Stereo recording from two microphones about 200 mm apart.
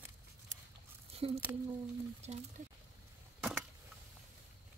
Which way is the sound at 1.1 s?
30° right (ahead or behind).